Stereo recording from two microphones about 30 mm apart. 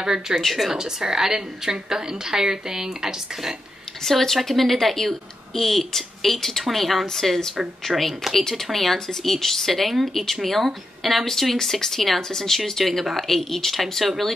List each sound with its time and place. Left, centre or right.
0.0 s a woman's voice: right
4.0 s speech: centre
7.9 s speech: centre
8.3 s speech: centre
13.7 s speech: centre